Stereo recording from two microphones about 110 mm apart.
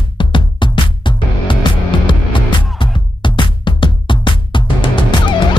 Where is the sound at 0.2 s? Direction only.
45° left (ahead or behind).